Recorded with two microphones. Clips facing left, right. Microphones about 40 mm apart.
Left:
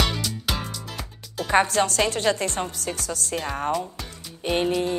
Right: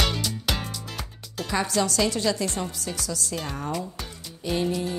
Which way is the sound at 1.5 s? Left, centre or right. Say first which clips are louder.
Left 5 dB; left.